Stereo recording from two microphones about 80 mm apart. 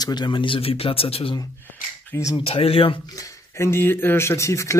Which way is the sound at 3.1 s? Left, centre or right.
Left.